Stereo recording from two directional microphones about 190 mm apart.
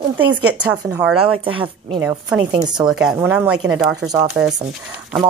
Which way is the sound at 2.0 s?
15° right (ahead or behind).